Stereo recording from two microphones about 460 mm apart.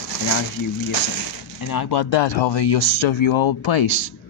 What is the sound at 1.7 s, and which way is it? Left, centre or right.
Speech, left.